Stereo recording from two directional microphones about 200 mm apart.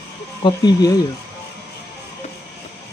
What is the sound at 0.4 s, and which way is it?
Speech, 20° left (ahead or behind).